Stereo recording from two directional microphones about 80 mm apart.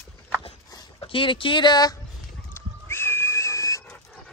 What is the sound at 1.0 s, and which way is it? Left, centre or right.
Speech, left.